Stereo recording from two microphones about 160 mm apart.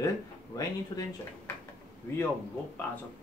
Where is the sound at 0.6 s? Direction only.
20° left (ahead or behind).